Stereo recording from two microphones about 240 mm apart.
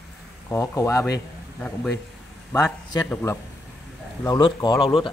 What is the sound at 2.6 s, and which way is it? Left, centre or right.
A man's voice, centre.